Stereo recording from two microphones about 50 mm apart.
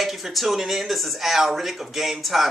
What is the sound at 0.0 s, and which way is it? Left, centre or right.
Speech, centre.